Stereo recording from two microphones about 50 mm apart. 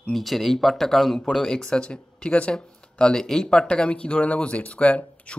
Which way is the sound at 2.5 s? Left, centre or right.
Centre.